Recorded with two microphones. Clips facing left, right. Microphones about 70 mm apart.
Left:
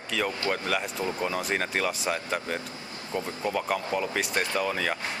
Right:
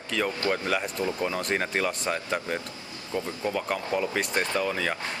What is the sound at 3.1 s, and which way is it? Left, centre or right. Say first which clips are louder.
Speech: right 1 dB; centre.